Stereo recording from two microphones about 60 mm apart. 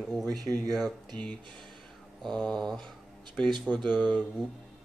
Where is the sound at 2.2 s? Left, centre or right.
Centre.